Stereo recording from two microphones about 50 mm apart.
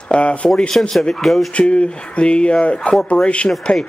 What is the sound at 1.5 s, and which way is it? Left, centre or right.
Speech, left.